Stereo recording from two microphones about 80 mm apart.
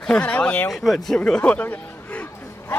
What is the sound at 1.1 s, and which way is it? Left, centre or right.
Speech, centre.